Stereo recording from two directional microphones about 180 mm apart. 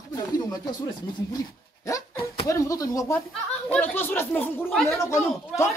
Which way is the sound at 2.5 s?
20° left (ahead or behind).